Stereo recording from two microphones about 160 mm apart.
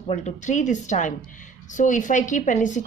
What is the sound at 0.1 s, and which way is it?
A woman's voice, 50° left (ahead or behind).